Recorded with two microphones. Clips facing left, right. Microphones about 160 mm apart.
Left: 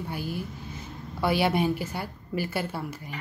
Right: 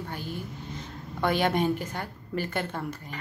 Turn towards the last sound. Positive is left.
turn(degrees=10)  # may be behind; listen again after turning